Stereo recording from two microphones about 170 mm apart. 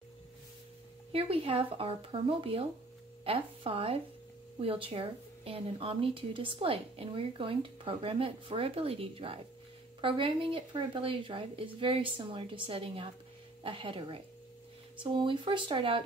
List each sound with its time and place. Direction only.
1.1 s speech: 35° right (ahead or behind)